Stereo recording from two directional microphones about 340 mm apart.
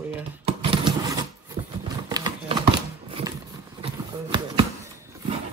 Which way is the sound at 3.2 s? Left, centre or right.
Centre.